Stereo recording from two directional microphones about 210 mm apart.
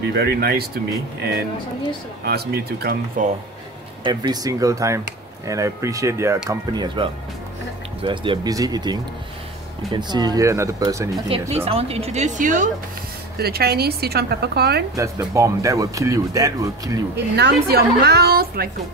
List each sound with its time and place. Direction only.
0.0 s a woman's voice: 50° right (ahead or behind)
4.0 s speech: 20° right (ahead or behind); by 12.6 s 35° right (ahead or behind)
13.4 s a woman's voice: 50° right (ahead or behind)
15.0 s speech: 15° right (ahead or behind)
17.1 s a woman's voice: 55° right (ahead or behind)